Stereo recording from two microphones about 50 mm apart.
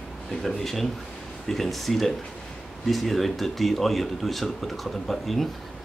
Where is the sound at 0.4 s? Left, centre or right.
Centre.